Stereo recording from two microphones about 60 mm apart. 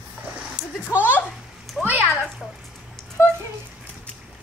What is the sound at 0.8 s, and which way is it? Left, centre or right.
Speech, left.